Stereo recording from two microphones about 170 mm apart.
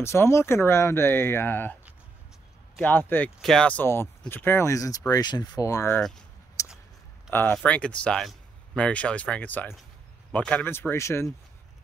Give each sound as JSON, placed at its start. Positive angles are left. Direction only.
{"t": 0.0, "sound": "speech", "side_deg": 15}
{"t": 2.8, "sound": "speech", "side_deg": 10}
{"t": 5.9, "sound": "speech", "side_deg": 5}
{"t": 6.6, "sound": "a sound", "side_deg": 20}
{"t": 7.2, "sound": "speech", "side_deg": 15}